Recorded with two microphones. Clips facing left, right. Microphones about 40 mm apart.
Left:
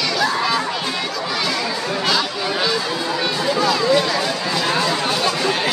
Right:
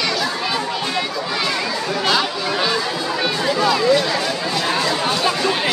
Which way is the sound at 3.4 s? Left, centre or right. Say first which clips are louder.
Right 2 dB; centre.